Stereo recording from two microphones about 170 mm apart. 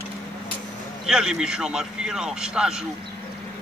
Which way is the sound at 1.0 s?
5° right (ahead or behind).